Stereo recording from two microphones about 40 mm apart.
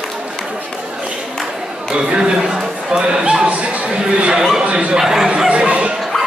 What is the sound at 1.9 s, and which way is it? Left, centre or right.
Chatter, right.